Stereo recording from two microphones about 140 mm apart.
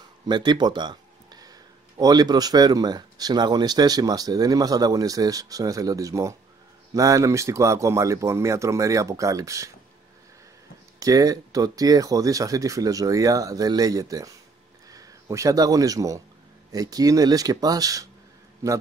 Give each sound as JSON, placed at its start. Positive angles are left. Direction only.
{"t": 0.3, "sound": "speech", "side_deg": -30}
{"t": 11.0, "sound": "speech", "side_deg": -25}